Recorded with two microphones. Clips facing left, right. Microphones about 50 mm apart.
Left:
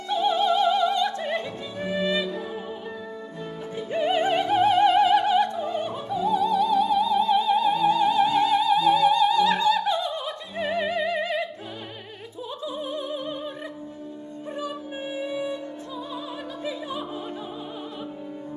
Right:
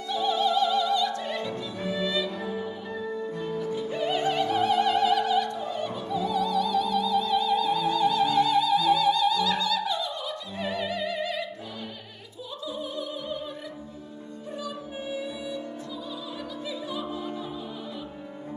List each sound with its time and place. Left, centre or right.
0.1 s opera: left
3.5 s music: left
12.6 s opera: left
14.6 s music: left